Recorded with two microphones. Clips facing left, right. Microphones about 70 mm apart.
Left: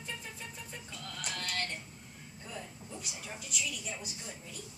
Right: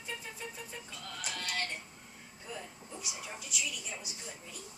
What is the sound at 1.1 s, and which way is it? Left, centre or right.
Speech, centre.